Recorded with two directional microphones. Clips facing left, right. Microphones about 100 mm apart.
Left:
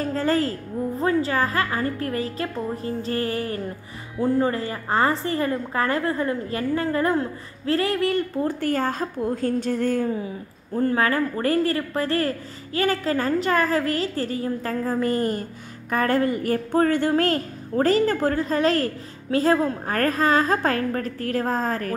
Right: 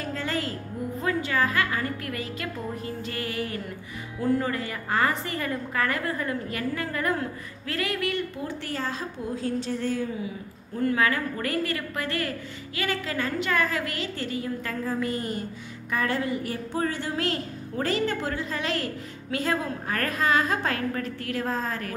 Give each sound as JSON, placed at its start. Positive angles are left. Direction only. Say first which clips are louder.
{"t": 0.0, "sound": "a woman's voice", "louder": "left 8 dB", "side_deg": 40}